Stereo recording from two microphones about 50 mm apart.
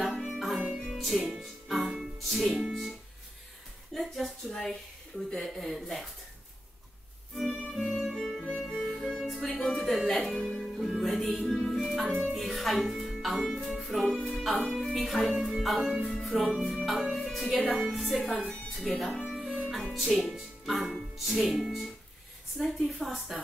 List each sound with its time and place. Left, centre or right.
0.1 s music: centre
3.9 s speech: centre
5.4 s music: centre
7.7 s music: centre
11.4 s music: centre
11.8 s music: centre
18.7 s speech: centre
19.3 s music: centre
20.3 s speech: centre
22.6 s music: centre